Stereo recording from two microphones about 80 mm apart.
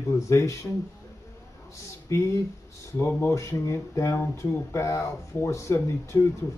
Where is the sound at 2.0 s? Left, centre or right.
Left.